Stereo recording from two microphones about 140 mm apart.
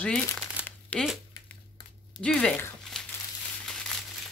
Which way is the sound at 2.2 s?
5° left (ahead or behind).